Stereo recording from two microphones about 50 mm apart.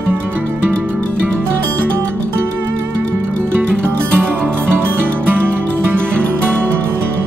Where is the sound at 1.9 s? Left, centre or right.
Right.